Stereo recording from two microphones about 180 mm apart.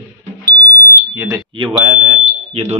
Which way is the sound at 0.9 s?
20° right (ahead or behind).